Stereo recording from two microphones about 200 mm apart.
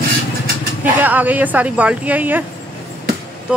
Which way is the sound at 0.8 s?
10° right (ahead or behind).